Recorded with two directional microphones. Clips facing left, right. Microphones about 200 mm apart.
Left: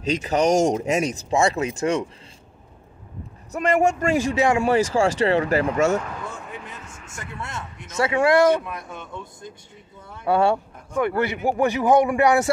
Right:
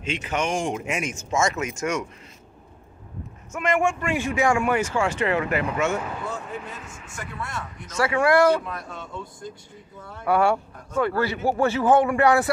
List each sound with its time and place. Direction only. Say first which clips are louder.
0.0 s speech: left 7 dB; 40° left (ahead or behind)
3.5 s speech: left 3 dB; 35° left (ahead or behind)
4.4 s speech: left 1 dB; 25° left (ahead or behind)
7.3 s speech: even; 25° left (ahead or behind)